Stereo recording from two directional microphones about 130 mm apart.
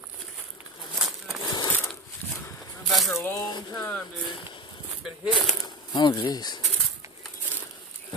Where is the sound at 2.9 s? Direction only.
Centre (ahead or behind).